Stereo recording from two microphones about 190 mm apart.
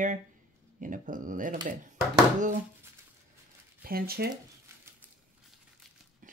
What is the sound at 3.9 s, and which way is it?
Speech, 50° right (ahead or behind).